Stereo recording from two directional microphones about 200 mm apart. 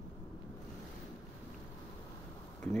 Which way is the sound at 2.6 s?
5° left (ahead or behind).